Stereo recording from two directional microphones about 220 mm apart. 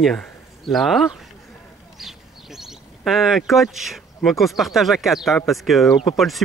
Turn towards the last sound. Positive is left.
turn(degrees=0)  # may be behind; listen again after turning